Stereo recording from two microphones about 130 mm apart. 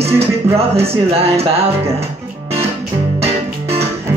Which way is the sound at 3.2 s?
50° right (ahead or behind).